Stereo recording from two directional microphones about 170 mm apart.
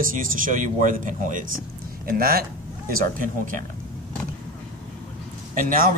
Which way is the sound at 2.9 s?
50° right (ahead or behind).